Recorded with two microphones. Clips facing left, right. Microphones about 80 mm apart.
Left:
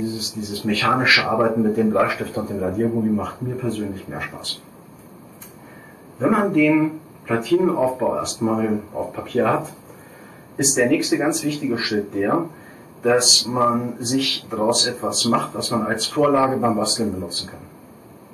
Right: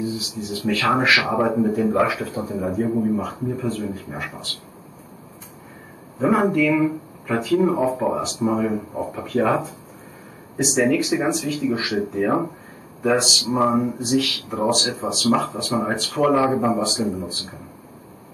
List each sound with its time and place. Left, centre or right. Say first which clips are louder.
0.0 s speech: left 1 dB; centre
6.1 s speech: left 1 dB; centre